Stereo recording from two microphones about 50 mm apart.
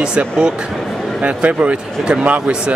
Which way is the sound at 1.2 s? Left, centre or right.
Right.